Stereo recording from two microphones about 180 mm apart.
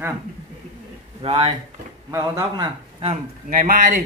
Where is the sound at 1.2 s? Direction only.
30° right (ahead or behind).